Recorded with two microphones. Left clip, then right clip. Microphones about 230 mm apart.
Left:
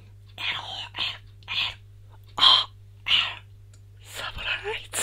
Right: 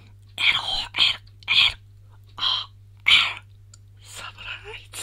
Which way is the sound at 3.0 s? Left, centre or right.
Right.